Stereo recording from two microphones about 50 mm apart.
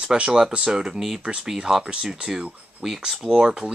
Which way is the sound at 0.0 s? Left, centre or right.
Centre.